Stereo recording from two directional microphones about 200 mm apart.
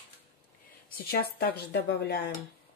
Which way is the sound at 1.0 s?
50° left (ahead or behind).